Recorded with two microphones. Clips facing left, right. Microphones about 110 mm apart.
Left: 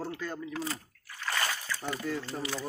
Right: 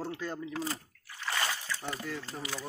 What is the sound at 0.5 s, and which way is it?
Speech, 30° right (ahead or behind).